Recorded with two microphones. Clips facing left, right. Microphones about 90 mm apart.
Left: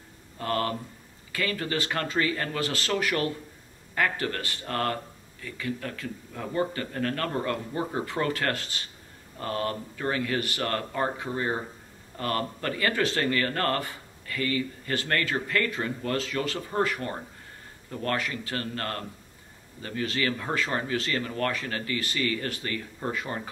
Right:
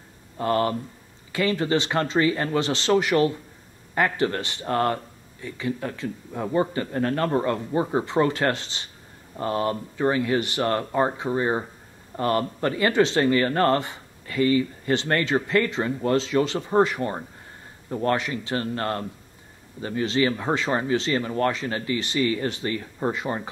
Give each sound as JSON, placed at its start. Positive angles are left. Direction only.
{"t": 0.4, "sound": "speech", "side_deg": -20}